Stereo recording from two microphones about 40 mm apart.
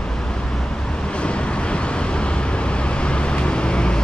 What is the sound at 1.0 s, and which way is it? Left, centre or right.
Vehicle, left.